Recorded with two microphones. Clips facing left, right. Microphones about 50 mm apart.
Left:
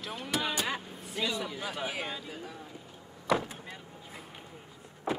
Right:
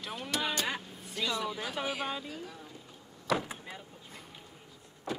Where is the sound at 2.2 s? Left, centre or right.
Centre.